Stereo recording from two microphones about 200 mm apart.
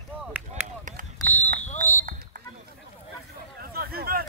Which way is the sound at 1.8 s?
45° right (ahead or behind).